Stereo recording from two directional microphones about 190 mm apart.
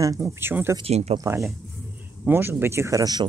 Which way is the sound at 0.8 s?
35° right (ahead or behind).